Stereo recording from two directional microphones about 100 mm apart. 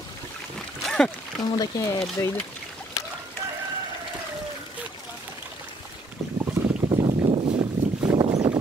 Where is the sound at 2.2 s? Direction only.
30° left (ahead or behind).